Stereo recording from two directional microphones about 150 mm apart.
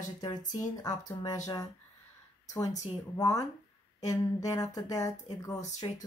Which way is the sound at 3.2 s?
20° left (ahead or behind).